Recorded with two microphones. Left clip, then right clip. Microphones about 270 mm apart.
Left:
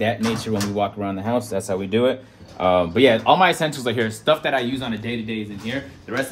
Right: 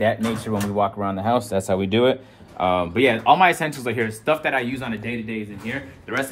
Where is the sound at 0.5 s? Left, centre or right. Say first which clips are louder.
Right 3 dB; centre; by 2.1 s right.